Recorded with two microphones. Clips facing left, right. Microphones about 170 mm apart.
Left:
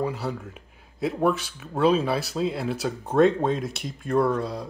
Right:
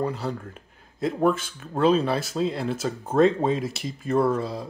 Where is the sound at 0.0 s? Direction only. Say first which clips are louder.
Even; 5° left (ahead or behind).